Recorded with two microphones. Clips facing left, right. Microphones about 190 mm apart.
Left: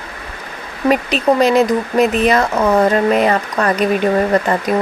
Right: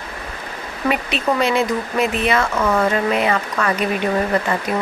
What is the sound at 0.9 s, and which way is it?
Speech, 40° left (ahead or behind).